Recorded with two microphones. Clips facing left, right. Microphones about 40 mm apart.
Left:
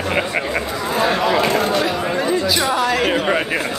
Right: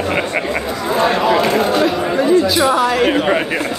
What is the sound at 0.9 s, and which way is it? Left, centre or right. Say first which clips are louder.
Speech: right 3 dB; centre.